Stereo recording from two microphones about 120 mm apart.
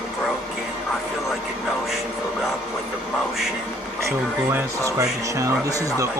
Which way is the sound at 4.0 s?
25° right (ahead or behind).